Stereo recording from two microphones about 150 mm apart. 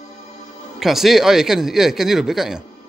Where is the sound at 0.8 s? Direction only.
Centre (ahead or behind).